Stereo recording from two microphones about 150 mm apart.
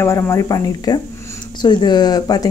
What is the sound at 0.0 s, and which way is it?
Speech, 20° left (ahead or behind).